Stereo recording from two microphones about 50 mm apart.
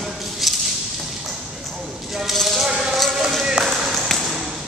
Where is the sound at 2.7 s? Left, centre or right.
Centre.